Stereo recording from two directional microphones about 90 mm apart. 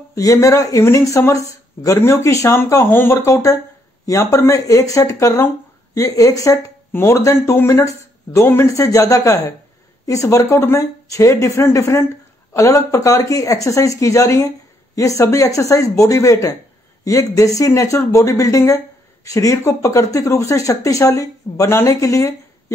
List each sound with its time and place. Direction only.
0.1 s speech: 35° left (ahead or behind)